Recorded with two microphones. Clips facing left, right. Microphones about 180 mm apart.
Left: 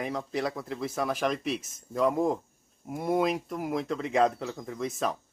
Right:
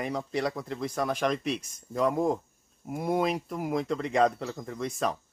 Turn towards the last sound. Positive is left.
turn(degrees=0)  # may be behind; listen again after turning